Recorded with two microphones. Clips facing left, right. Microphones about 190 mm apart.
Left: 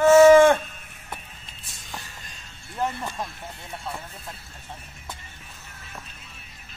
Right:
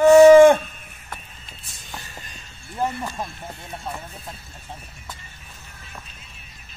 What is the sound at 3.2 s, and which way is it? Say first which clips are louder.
Speech: right 2 dB; 20° right (ahead or behind).